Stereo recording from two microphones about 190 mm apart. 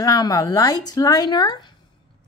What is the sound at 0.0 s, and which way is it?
Speech, 20° left (ahead or behind).